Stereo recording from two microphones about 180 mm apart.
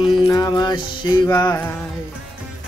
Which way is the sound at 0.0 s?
25° left (ahead or behind).